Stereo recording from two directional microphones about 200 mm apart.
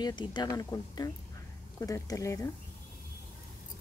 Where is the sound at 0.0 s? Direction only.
20° left (ahead or behind).